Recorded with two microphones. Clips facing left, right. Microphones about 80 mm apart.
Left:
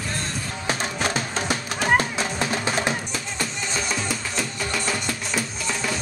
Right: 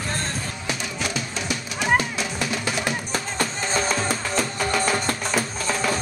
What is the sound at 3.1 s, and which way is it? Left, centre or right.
Music, right.